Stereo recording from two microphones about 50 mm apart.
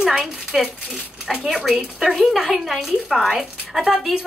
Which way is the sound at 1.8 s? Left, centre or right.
Centre.